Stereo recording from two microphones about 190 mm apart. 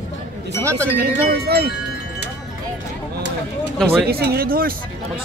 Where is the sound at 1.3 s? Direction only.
55° right (ahead or behind).